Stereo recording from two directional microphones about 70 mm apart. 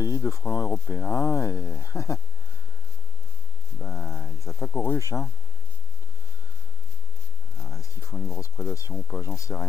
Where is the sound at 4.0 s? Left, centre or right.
Centre.